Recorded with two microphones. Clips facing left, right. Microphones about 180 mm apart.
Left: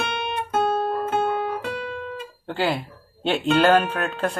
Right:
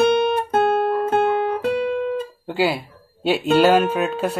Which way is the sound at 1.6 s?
55° right (ahead or behind).